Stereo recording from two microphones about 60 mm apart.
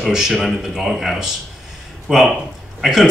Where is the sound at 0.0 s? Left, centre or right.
Centre.